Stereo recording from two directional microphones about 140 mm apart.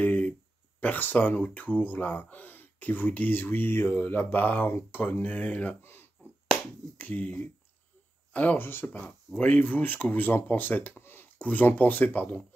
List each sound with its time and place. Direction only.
0.0 s a sound: 10° left (ahead or behind)
0.7 s speech: 10° left (ahead or behind)
6.4 s finger snapping: centre (ahead or behind)
7.0 s speech: 10° left (ahead or behind)